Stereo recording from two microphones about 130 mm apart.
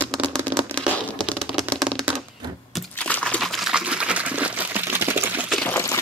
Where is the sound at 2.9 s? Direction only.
10° left (ahead or behind); by 5.4 s 15° right (ahead or behind).